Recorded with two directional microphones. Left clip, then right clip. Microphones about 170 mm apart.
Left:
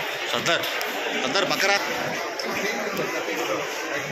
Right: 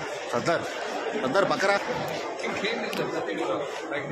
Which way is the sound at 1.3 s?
65° right (ahead or behind).